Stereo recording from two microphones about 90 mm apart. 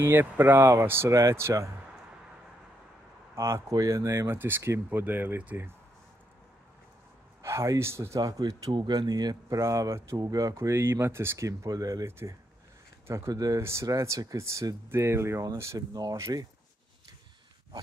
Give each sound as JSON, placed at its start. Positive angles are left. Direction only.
{"t": 0.0, "sound": "speech", "side_deg": -25}
{"t": 3.3, "sound": "speech", "side_deg": -35}
{"t": 7.4, "sound": "speech", "side_deg": -35}
{"t": 8.2, "sound": "speech", "side_deg": -45}
{"t": 8.7, "sound": "speech", "side_deg": -55}
{"t": 9.6, "sound": "speech", "side_deg": -35}
{"t": 13.3, "sound": "speech", "side_deg": -45}
{"t": 13.6, "sound": "speech", "side_deg": -30}
{"t": 15.9, "sound": "speech", "side_deg": -45}